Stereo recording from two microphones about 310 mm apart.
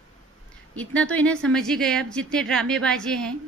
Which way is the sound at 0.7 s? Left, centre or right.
Centre.